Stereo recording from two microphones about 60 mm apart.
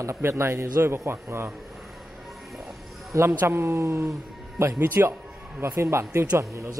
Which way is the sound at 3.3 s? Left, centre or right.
Right.